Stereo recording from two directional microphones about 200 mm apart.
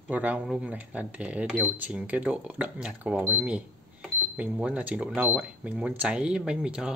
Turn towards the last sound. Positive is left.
turn(degrees=-5)  # may be behind; listen again after turning